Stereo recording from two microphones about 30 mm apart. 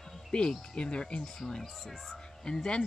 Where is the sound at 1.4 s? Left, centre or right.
Centre.